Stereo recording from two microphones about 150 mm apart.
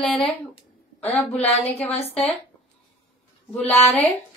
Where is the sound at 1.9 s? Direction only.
45° left (ahead or behind).